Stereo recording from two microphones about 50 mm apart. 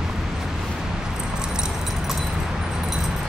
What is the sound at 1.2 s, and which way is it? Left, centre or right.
Keys jangling, centre.